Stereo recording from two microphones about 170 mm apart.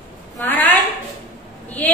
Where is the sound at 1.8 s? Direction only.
10° left (ahead or behind).